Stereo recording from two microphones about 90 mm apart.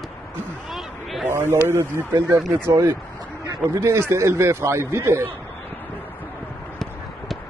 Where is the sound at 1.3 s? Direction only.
30° right (ahead or behind).